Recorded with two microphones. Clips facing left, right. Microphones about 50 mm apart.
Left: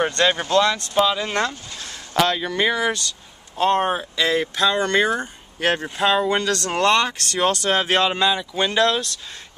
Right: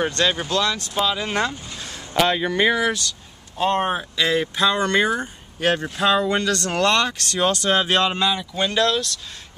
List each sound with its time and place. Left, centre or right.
0.0 s speech: centre
5.6 s speech: centre
6.7 s speech: centre